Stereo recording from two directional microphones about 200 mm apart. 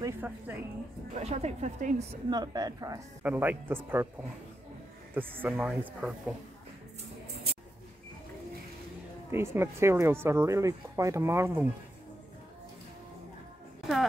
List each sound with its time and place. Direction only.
0.0 s speech: 10° right (ahead or behind)
1.1 s a woman's voice: 35° right (ahead or behind)
2.2 s speech: 20° right (ahead or behind)
5.1 s speech: 10° right (ahead or behind)
9.3 s speech: 15° right (ahead or behind)